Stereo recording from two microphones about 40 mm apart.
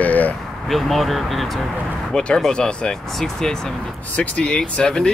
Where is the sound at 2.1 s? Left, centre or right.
Left.